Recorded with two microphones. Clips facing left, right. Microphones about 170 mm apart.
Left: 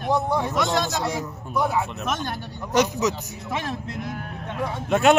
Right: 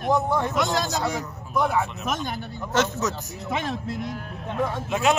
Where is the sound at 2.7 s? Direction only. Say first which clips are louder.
Left 3 dB; 15° left (ahead or behind).